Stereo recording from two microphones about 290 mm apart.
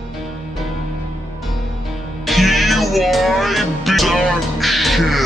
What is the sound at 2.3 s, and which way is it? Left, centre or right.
Music, centre.